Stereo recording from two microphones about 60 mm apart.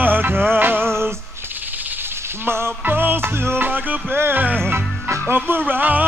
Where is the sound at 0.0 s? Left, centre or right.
Right.